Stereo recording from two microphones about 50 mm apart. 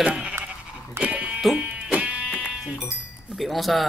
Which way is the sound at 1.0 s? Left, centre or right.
Right.